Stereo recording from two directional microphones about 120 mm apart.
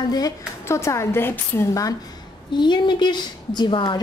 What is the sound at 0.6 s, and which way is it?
A woman's voice, 25° left (ahead or behind).